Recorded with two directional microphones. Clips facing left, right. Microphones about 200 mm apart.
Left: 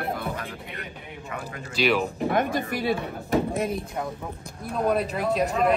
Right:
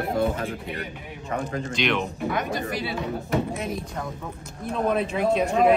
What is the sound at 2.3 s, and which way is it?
Speech, 50° left (ahead or behind).